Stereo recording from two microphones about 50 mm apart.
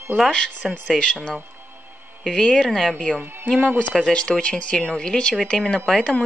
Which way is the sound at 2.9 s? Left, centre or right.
Centre.